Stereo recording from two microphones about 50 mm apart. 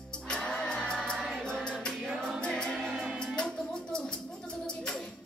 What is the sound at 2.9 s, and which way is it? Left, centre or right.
Music, centre.